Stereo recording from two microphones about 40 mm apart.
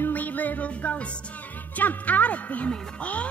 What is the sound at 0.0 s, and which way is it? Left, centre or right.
Music, left.